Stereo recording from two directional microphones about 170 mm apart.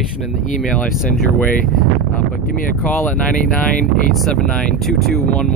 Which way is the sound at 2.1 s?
50° left (ahead or behind).